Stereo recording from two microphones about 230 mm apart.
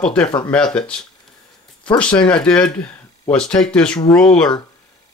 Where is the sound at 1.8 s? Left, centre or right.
Centre.